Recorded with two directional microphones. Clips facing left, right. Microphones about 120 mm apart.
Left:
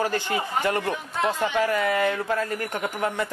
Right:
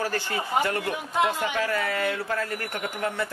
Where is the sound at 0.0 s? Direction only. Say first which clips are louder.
Left 3 dB; 20° left (ahead or behind).